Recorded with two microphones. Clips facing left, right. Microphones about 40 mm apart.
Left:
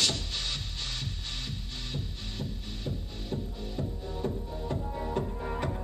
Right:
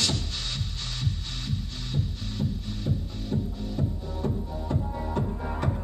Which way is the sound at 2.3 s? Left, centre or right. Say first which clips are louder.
Right 8 dB; centre.